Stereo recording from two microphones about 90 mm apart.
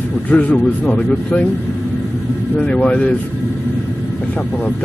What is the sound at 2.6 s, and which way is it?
Speech, 15° left (ahead or behind).